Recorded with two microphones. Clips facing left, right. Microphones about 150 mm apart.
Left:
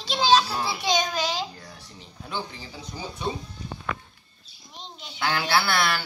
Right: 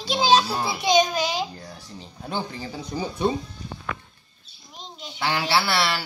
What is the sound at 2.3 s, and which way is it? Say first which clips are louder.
Speech: right 4 dB; 50° right (ahead or behind).